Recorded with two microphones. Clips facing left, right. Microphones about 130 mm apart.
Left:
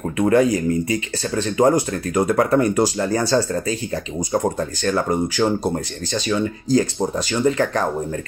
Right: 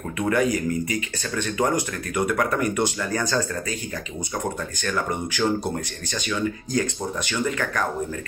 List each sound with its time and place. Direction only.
0.2 s speech: 35° left (ahead or behind)